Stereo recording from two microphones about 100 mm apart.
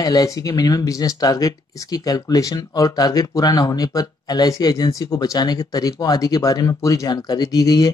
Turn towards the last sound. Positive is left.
turn(degrees=40)  # may be behind; listen again after turning